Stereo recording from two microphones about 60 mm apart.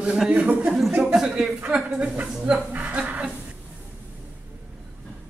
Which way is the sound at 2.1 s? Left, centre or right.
Centre.